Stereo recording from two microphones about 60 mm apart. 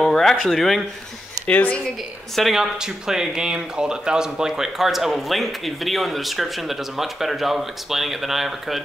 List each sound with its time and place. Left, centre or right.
0.0 s a sound: centre
0.5 s speech: centre
1.5 s speech: left
2.3 s speech: centre
2.6 s speech: centre